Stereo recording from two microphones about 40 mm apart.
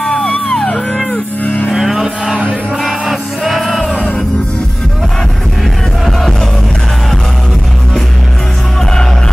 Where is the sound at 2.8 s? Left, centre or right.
Centre.